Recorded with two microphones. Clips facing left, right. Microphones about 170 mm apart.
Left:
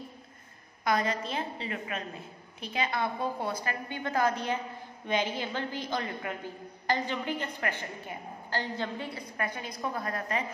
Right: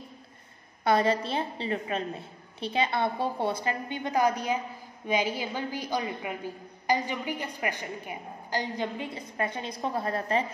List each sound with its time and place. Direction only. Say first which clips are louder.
0.8 s a woman's voice: right 5 dB; 30° right (ahead or behind)